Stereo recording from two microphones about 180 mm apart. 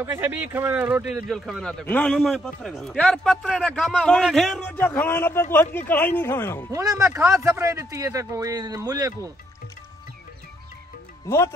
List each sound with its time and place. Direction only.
0.0 s a man's voice: 10° right (ahead or behind); by 6.7 s 15° left (ahead or behind)
6.7 s a man's voice: 20° right (ahead or behind)
11.2 s a man's voice: 15° left (ahead or behind)